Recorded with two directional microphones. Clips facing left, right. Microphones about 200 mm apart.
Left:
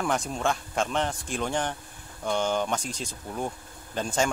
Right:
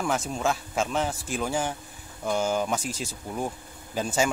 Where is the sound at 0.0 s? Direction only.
Centre (ahead or behind).